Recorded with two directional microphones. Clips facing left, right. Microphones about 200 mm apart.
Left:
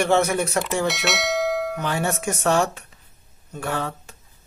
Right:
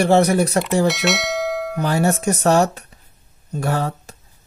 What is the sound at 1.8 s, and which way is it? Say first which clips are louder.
Speech: right 6 dB; 40° right (ahead or behind).